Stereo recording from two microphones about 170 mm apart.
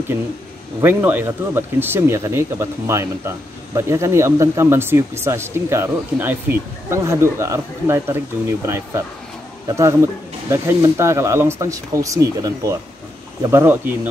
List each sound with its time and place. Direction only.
0.7 s speech: 15° right (ahead or behind)
10.5 s speech: 15° right (ahead or behind)